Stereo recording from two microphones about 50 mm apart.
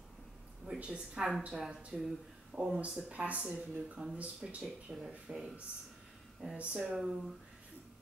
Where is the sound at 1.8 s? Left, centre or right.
Right.